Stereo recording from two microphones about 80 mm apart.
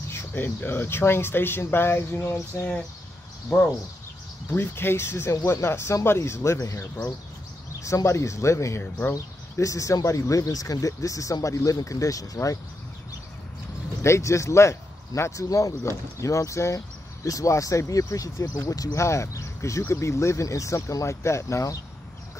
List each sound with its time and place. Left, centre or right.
0.1 s speech: left
3.4 s speech: centre
4.5 s speech: left
14.0 s speech: left